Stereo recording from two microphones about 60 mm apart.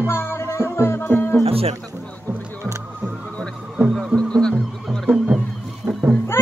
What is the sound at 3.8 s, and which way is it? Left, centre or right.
Music, right.